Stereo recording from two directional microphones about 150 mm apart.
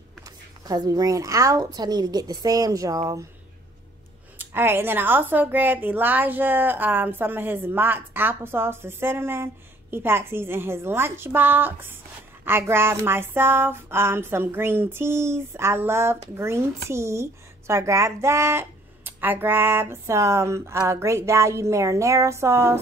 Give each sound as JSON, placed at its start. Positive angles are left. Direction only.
{"t": 0.7, "sound": "speech", "side_deg": -25}
{"t": 4.4, "sound": "a woman's voice", "side_deg": -15}